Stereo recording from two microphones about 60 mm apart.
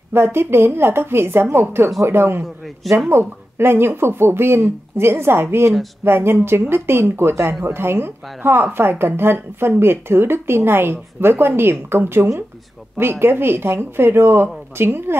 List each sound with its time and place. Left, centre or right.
0.1 s a woman's voice: right
2.8 s speech: centre
3.1 s a woman's voice: right